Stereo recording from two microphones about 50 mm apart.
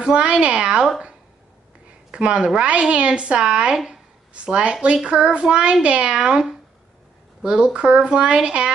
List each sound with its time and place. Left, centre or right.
0.0 s a woman's voice: centre
2.0 s a woman's voice: right
3.7 s speech: centre
4.3 s a woman's voice: right
7.4 s a woman's voice: centre